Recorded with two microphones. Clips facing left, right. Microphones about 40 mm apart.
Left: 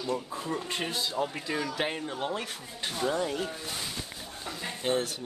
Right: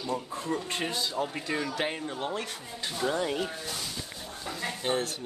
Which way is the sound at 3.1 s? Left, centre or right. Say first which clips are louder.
Right 1 dB; centre.